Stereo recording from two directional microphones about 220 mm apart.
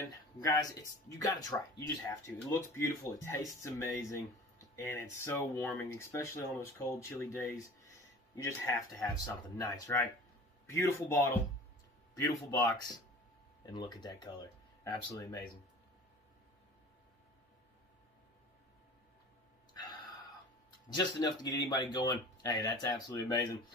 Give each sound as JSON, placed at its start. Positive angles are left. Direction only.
{"t": 0.5, "sound": "speech", "side_deg": 15}
{"t": 19.7, "sound": "gasp", "side_deg": 15}
{"t": 20.9, "sound": "speech", "side_deg": 15}